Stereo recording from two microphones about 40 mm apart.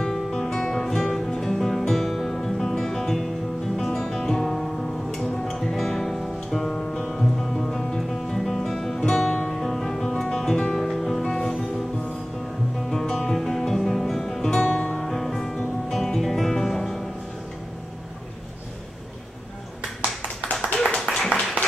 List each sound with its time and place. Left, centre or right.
0.2 s guitar: centre
0.8 s music: centre
12.9 s music: centre
14.7 s music: left
15.0 s music: centre
20.8 s a sound: centre